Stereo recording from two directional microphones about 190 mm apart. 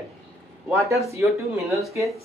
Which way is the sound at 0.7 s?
15° right (ahead or behind).